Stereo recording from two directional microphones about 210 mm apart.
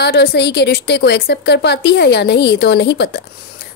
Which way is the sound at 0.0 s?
45° left (ahead or behind).